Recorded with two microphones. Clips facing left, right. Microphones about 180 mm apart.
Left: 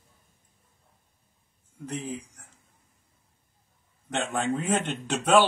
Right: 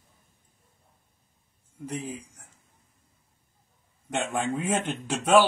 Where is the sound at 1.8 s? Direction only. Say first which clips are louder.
Even; 10° right (ahead or behind).